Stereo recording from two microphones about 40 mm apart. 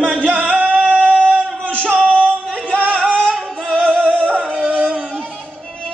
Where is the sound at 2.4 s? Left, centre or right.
Left.